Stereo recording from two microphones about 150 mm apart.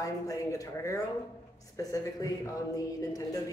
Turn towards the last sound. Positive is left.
turn(degrees=25)  # may be behind; listen again after turning